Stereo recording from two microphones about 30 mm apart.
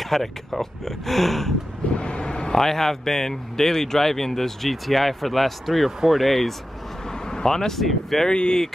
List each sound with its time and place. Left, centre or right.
0.0 s speech: centre
2.0 s vehicle: left
2.5 s speech: centre
5.7 s speech: centre
6.1 s speech: centre
7.1 s vehicle: left
7.8 s speech: centre
8.3 s speech: left